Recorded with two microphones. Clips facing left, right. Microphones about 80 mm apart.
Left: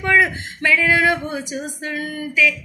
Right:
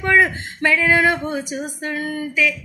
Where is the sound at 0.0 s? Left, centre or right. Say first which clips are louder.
Right 1 dB; right.